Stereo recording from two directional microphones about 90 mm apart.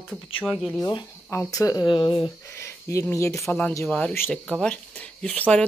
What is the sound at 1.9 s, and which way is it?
Speech, 70° left (ahead or behind).